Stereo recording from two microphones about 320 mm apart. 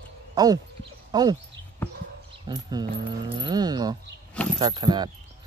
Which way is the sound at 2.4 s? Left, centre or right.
Centre.